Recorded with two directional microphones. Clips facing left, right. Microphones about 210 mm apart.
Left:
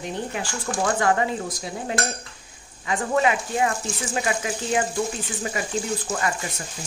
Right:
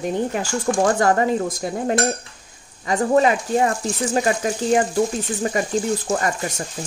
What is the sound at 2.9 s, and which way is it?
Speech, 40° right (ahead or behind).